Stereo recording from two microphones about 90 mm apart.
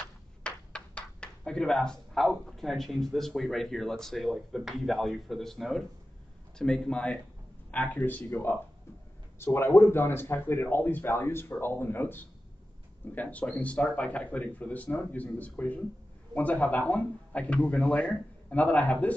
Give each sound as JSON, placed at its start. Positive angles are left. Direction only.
{"t": 0.4, "sound": "speech", "side_deg": 10}